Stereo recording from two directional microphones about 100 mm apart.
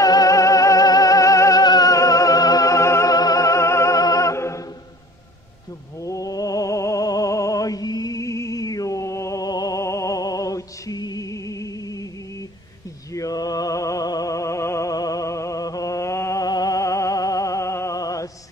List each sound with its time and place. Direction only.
0.0 s music: 35° left (ahead or behind)
6.0 s music: 35° left (ahead or behind)
13.1 s music: 35° left (ahead or behind)